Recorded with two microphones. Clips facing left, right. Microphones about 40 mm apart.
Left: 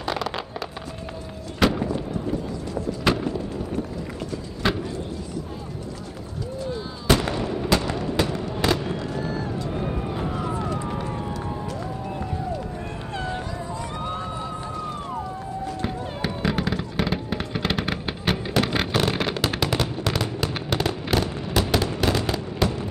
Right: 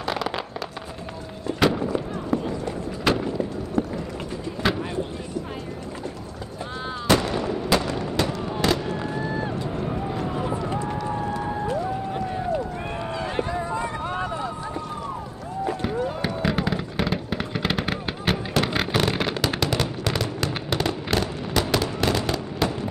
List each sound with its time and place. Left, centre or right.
0.0 s fireworks: centre
1.6 s artillery fire: centre
3.0 s a sound: centre
3.8 s run: right
4.6 s vehicle: centre
7.3 s artillery fire: centre
7.7 s fireworks: centre
8.5 s fireworks: centre
8.9 s fireworks: right
10.3 s run: centre
13.2 s a sound: right
16.4 s fireworks: centre